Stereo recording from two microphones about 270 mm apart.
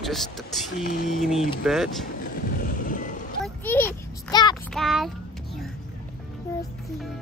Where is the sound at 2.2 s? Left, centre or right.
Left.